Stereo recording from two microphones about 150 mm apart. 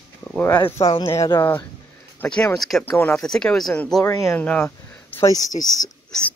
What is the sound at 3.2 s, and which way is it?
Speech, 5° left (ahead or behind).